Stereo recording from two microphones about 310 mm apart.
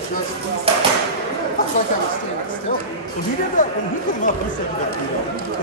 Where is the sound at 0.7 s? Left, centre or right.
Centre.